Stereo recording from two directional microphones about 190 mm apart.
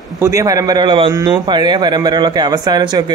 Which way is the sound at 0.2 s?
15° right (ahead or behind).